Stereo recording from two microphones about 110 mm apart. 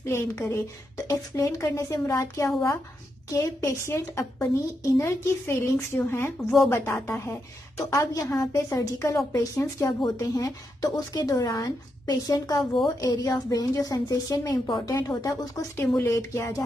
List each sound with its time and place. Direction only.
0.0 s a woman's voice: 25° left (ahead or behind)